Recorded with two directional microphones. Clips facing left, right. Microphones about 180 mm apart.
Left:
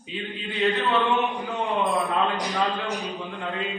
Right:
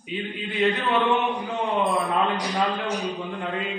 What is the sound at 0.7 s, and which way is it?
Mantra, 15° right (ahead or behind).